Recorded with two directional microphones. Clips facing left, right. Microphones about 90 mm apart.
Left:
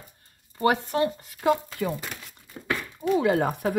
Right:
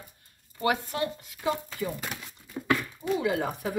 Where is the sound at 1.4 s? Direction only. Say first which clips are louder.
Left 7 dB; 55° left (ahead or behind).